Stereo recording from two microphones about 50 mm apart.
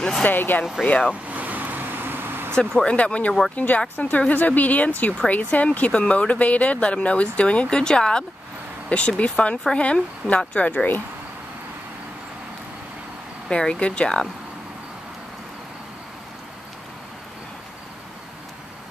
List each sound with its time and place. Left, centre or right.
0.2 s speech: left
0.8 s speech: left
1.3 s vehicle: right
2.5 s speech: centre
13.5 s speech: centre